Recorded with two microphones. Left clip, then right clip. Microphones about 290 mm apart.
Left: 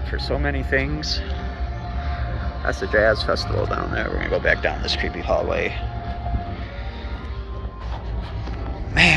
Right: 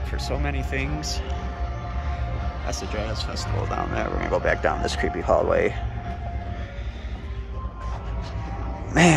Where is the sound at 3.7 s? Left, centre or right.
Centre.